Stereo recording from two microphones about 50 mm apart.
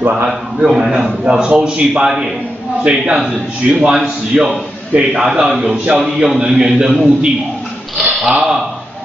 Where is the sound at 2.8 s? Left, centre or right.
Centre.